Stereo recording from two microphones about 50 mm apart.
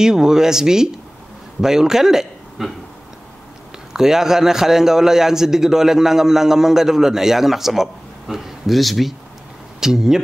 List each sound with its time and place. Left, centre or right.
0.0 s a man's voice: centre
3.9 s a man's voice: centre